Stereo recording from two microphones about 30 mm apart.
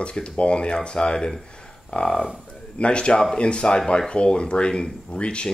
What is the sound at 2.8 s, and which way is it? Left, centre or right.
Speech, left.